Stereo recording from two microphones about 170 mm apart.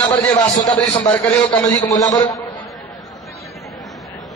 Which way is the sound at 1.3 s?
5° left (ahead or behind).